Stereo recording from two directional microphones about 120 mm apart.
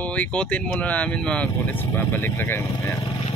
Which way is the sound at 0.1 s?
10° left (ahead or behind).